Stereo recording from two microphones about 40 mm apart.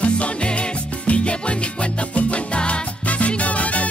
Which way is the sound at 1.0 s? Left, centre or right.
Left.